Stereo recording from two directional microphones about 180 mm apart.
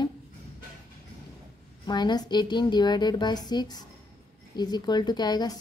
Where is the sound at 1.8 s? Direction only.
25° left (ahead or behind).